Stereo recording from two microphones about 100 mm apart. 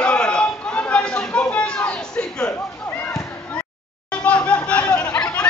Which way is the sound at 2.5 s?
20° left (ahead or behind).